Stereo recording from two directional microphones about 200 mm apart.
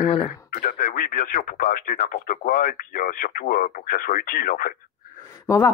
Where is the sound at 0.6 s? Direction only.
45° left (ahead or behind).